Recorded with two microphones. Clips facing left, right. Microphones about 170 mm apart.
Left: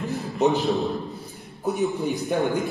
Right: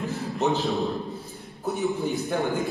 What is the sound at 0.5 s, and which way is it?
A man's voice, 20° left (ahead or behind).